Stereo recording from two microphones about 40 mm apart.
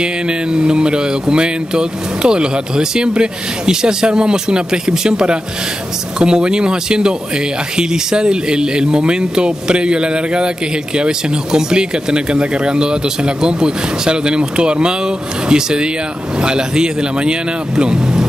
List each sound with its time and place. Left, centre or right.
0.0 s speech: right